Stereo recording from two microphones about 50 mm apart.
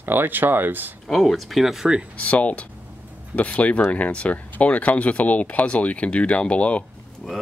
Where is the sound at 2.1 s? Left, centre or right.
Left.